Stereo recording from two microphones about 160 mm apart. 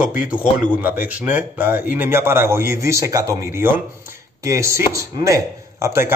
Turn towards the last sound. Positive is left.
turn(degrees=-15)  # may be behind; listen again after turning